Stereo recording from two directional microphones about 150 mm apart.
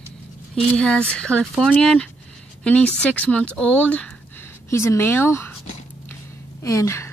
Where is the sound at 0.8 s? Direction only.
5° left (ahead or behind).